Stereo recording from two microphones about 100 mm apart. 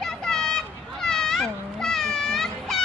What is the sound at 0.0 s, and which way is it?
Children playing, 5° left (ahead or behind).